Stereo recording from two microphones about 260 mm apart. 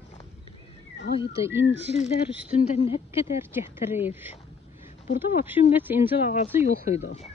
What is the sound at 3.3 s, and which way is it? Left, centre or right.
Speech, centre.